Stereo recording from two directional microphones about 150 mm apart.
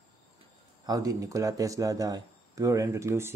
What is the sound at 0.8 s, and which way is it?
Speech, 25° right (ahead or behind).